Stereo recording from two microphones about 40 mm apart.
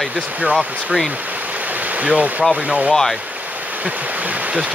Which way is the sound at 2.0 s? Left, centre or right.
Right.